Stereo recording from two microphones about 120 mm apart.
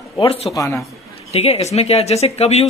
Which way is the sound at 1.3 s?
60° left (ahead or behind).